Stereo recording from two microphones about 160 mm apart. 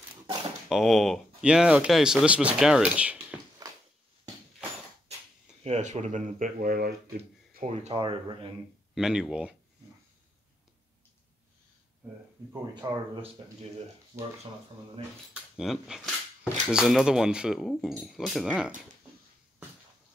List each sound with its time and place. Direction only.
0.7 s speech: centre (ahead or behind)
5.6 s speech: 45° right (ahead or behind); by 6.9 s 65° right (ahead or behind)
7.6 s speech: 45° right (ahead or behind)
8.0 s speech: 30° right (ahead or behind)
8.9 s speech: centre (ahead or behind)
12.8 s speech: 25° right (ahead or behind)
15.3 s speech: centre (ahead or behind)